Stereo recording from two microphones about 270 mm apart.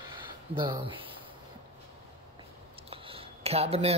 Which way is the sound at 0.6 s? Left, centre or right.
Centre.